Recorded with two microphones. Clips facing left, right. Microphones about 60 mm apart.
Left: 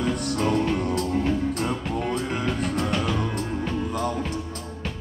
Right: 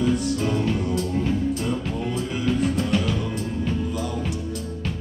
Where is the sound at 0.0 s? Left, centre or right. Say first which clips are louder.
Right 2 dB; left.